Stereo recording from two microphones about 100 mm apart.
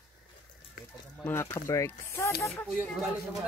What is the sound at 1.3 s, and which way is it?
Speech, 25° left (ahead or behind).